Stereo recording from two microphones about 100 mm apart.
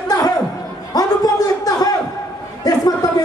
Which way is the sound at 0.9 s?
40° left (ahead or behind).